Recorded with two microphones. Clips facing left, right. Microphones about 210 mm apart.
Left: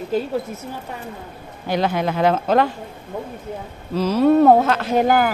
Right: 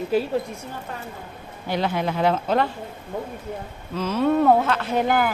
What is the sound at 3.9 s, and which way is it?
Speech, 35° left (ahead or behind).